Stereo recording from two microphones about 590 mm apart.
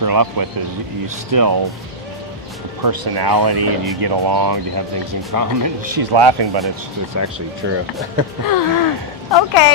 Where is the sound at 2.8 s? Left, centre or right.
Right.